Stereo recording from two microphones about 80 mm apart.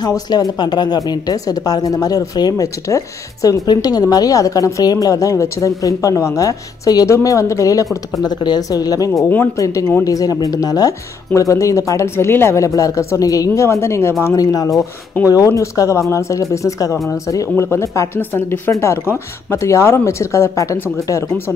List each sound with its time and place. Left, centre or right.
0.0 s a woman's voice: left
8.2 s a woman's voice: left
14.2 s a woman's voice: left